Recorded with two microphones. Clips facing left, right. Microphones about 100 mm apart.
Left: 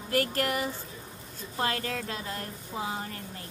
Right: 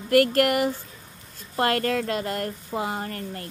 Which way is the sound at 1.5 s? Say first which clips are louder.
Right 8 dB; 65° right (ahead or behind).